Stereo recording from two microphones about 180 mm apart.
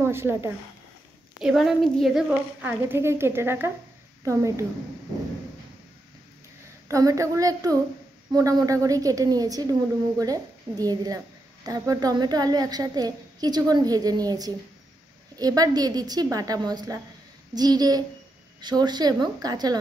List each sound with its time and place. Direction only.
0.0 s speech: 15° right (ahead or behind)
1.4 s speech: centre (ahead or behind)
6.9 s a woman's voice: 20° right (ahead or behind)